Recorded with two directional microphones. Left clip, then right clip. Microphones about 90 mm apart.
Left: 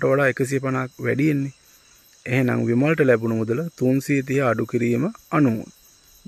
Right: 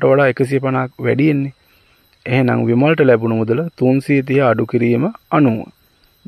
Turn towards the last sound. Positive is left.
turn(degrees=-25)  # may be behind; listen again after turning